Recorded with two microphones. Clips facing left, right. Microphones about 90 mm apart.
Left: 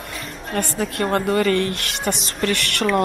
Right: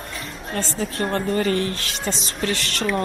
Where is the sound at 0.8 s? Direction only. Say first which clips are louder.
Left 3 dB; 50° left (ahead or behind).